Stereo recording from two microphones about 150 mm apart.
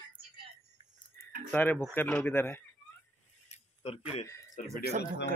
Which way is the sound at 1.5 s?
15° left (ahead or behind).